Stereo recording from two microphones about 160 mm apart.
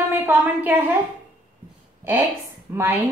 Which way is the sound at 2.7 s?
15° right (ahead or behind).